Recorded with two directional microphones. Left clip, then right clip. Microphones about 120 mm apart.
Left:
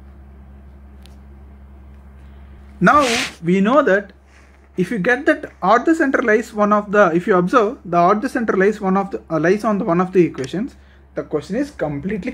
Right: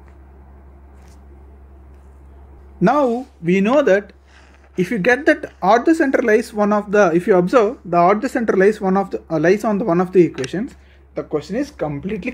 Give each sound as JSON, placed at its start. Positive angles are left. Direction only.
{"t": 3.4, "sound": "speech", "side_deg": -15}
{"t": 7.6, "sound": "speech", "side_deg": -5}
{"t": 8.4, "sound": "speech", "side_deg": -20}